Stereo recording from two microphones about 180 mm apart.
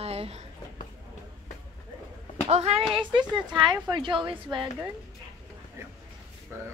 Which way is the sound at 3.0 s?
25° right (ahead or behind).